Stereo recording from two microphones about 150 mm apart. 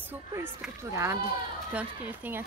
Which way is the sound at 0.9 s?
20° right (ahead or behind).